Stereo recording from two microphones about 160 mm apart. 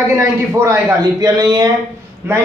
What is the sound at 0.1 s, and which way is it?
A man's voice, 15° right (ahead or behind).